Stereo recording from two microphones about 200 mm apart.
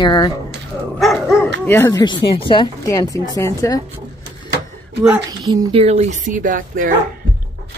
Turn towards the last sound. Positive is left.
turn(degrees=-40)  # may be behind; listen again after turning